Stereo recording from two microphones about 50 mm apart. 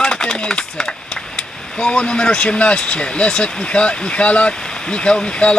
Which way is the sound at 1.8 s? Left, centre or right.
Centre.